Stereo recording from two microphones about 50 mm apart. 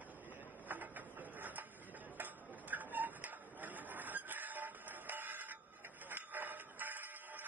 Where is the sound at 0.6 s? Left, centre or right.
Right.